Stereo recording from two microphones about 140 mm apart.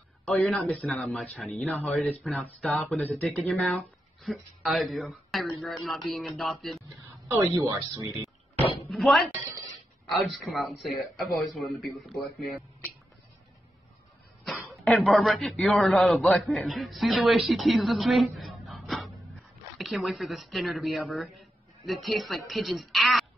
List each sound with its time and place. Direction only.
0.3 s speech: 5° left (ahead or behind)
7.2 s speech: 20° right (ahead or behind)
8.9 s speech: centre (ahead or behind)
14.9 s a man's voice: centre (ahead or behind)